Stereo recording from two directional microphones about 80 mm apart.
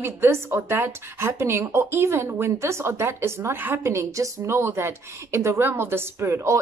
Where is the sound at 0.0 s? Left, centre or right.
Right.